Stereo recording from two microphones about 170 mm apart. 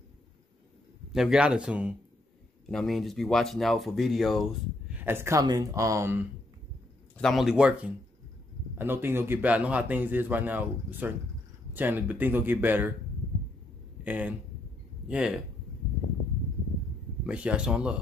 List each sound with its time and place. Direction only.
1.1 s speech: 5° right (ahead or behind)
4.9 s a man's voice: 15° right (ahead or behind)
7.2 s a man's voice: centre (ahead or behind)
14.0 s speech: 10° right (ahead or behind)
17.3 s a man's voice: 5° right (ahead or behind)